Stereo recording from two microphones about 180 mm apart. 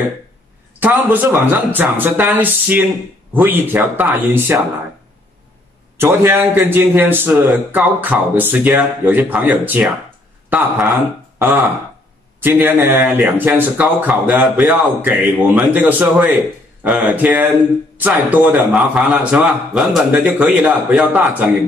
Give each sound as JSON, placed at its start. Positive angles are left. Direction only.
{"t": 0.7, "sound": "a man's voice", "side_deg": -10}
{"t": 5.9, "sound": "a man's voice", "side_deg": -15}